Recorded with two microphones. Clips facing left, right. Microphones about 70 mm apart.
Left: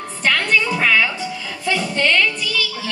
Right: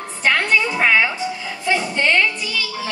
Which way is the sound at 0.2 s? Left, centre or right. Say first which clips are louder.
Right 1 dB; right.